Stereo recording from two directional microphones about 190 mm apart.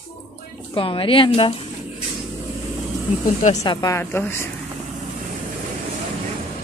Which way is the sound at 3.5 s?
15° left (ahead or behind).